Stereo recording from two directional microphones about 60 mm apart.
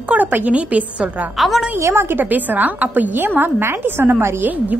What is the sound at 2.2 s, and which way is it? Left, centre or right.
A woman's voice, right.